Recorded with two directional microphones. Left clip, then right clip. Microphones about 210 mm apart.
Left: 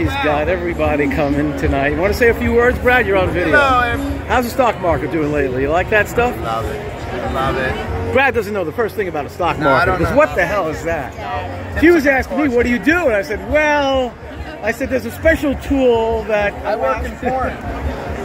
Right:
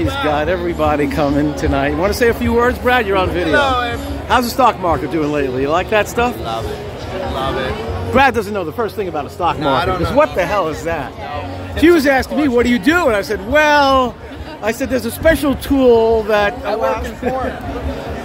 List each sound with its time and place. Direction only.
0.3 s speech: 15° right (ahead or behind); by 4.0 s 5° left (ahead or behind)
4.3 s speech: 10° right (ahead or behind)
8.1 s speech: 20° right (ahead or behind)
8.4 s a man's voice: 5° right (ahead or behind); by 15.5 s 20° right (ahead or behind)
15.8 s speech: 35° right (ahead or behind)
16.3 s speech: 20° right (ahead or behind)